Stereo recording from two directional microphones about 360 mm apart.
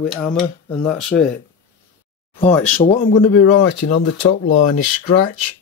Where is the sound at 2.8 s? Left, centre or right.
Left.